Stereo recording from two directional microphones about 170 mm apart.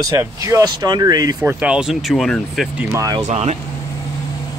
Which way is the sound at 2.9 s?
20° right (ahead or behind).